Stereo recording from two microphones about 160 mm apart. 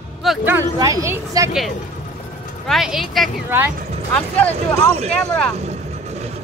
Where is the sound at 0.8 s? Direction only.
20° right (ahead or behind).